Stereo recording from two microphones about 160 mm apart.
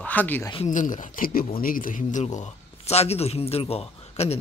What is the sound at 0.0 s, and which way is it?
Speech, 10° left (ahead or behind).